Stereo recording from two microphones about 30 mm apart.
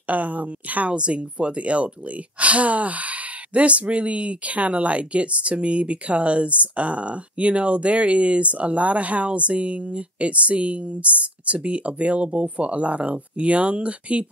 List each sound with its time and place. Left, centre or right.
0.0 s a woman's voice: right
0.8 s speech: right